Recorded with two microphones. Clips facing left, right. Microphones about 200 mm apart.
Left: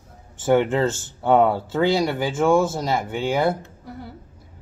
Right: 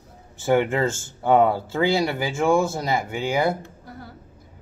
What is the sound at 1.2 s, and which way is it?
Speech, 10° right (ahead or behind).